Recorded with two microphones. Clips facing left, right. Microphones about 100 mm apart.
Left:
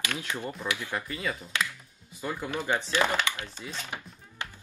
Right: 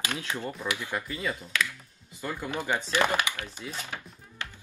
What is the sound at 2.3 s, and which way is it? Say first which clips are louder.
Speech: even; 15° right (ahead or behind).